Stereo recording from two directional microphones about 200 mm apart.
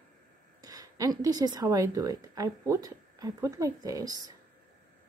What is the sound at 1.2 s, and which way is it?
A woman's voice, 20° right (ahead or behind).